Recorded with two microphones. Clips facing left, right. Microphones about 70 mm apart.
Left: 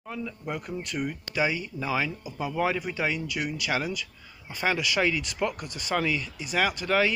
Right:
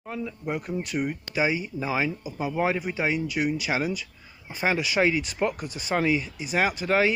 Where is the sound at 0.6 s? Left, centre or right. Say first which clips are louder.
Right 4 dB; centre.